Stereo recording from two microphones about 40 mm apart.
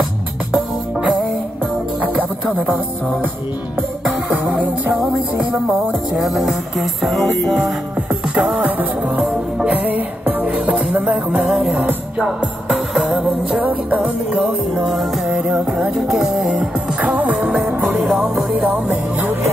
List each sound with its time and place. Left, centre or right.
2.0 s music: right
6.1 s music: centre
8.1 s music: right
9.8 s music: right
11.4 s music: centre
11.8 s music: right
12.7 s music: centre
15.2 s music: right
16.1 s music: centre
16.5 s music: right
17.9 s music: centre